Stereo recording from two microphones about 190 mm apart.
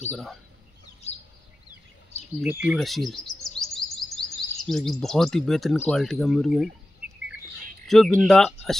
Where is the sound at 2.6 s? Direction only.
Centre (ahead or behind).